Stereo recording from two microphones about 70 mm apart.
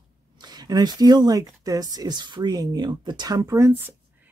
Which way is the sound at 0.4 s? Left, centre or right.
Right.